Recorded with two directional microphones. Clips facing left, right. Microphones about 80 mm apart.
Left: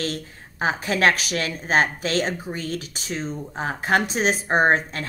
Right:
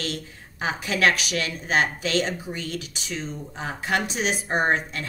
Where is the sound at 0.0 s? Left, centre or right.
Left.